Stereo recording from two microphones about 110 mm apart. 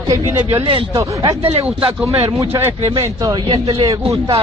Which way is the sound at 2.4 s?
25° right (ahead or behind).